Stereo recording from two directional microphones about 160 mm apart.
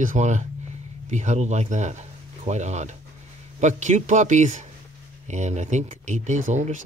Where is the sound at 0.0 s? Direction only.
50° right (ahead or behind).